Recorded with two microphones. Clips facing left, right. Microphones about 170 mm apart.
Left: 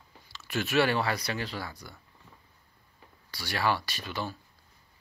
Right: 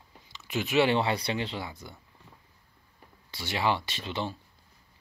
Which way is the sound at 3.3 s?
25° right (ahead or behind).